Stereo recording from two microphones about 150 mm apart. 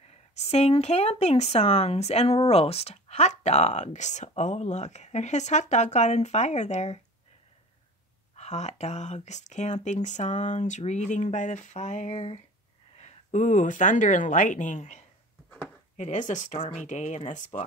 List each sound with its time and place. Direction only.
0.3 s speech: 45° left (ahead or behind)
8.4 s speech: 50° left (ahead or behind)